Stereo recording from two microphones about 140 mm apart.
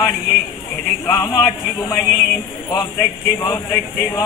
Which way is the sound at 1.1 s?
25° left (ahead or behind).